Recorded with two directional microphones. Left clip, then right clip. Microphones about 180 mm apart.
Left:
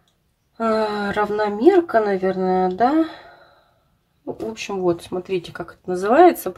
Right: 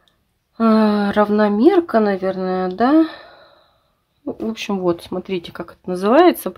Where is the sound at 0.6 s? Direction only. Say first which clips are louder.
Right 4 dB; 35° right (ahead or behind).